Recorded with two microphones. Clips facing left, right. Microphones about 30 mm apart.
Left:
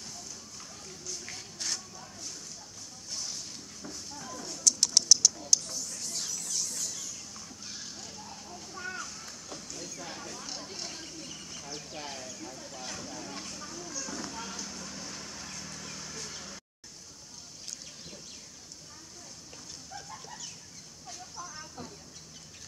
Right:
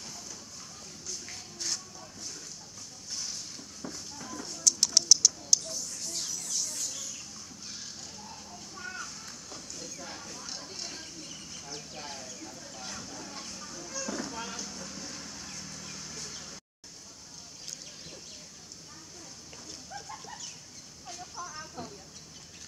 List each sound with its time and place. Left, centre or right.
3.1 s vehicle: centre
3.8 s a sound: centre
4.5 s bird: centre
8.7 s a sound: centre
13.9 s music: centre
14.7 s vehicle: centre
20.1 s bird: centre
21.8 s chicken: right